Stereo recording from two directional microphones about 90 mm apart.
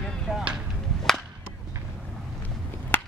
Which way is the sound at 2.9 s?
20° left (ahead or behind).